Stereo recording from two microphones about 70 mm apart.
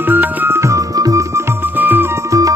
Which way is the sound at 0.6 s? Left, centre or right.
Right.